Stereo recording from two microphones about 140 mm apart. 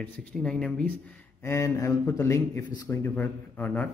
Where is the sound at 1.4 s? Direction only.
20° left (ahead or behind).